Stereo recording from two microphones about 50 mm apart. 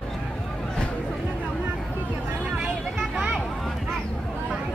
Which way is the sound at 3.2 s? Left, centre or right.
Right.